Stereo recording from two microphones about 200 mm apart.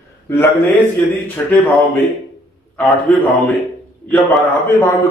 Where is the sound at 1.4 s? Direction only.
5° left (ahead or behind).